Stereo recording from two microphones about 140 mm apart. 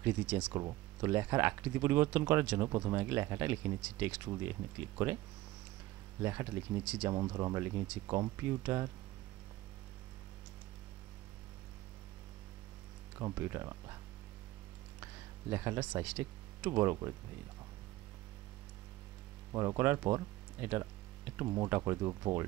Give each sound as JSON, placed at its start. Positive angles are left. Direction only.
{"t": 0.0, "sound": "speech", "side_deg": -10}
{"t": 0.5, "sound": "speech", "side_deg": -25}
{"t": 1.1, "sound": "speech", "side_deg": -15}
{"t": 6.2, "sound": "speech", "side_deg": -15}
{"t": 7.3, "sound": "speech", "side_deg": -25}
{"t": 13.2, "sound": "speech", "side_deg": -20}
{"t": 15.5, "sound": "speech", "side_deg": -20}
{"t": 19.5, "sound": "speech", "side_deg": -25}
{"t": 20.6, "sound": "speech", "side_deg": -15}